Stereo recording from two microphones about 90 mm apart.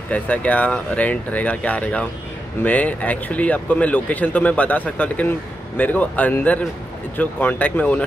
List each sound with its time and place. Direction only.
0.1 s speech: 15° left (ahead or behind)